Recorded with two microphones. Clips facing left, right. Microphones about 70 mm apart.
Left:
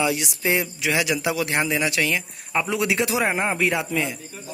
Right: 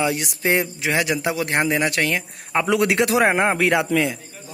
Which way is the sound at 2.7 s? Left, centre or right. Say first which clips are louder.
Right 6 dB; right.